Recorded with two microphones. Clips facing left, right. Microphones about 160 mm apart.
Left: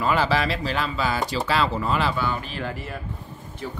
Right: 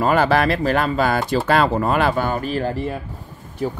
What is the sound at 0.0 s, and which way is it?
Speech, 55° right (ahead or behind).